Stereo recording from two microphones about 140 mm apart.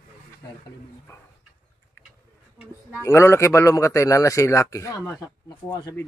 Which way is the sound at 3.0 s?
20° left (ahead or behind).